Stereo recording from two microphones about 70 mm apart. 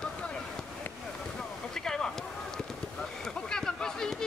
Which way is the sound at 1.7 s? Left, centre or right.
Centre.